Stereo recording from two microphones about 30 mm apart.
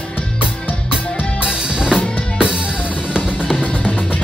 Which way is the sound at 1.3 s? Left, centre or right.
Right.